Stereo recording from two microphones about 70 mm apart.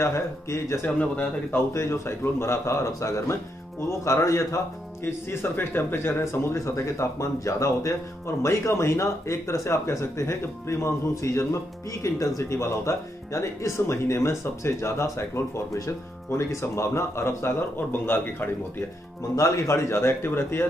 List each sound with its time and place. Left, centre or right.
0.0 s speech: left
0.8 s speech: left
1.7 s speech: left
19.3 s speech: left